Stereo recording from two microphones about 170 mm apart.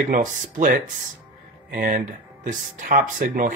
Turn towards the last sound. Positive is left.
turn(degrees=-55)  # may be behind; listen again after turning